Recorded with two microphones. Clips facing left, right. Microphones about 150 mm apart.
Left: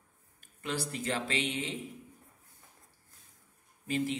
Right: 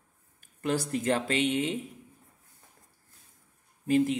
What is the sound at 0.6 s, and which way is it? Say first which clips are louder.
Speech: right 7 dB; 45° right (ahead or behind).